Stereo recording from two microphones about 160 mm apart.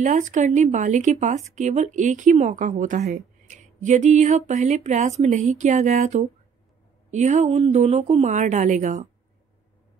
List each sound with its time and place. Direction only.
0.0 s speech: 50° right (ahead or behind)